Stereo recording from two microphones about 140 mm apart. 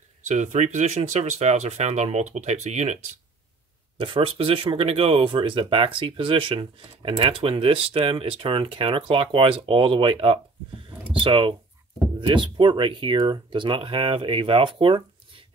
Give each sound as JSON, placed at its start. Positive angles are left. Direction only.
{"t": 0.3, "sound": "speech", "side_deg": -55}
{"t": 4.0, "sound": "speech", "side_deg": -40}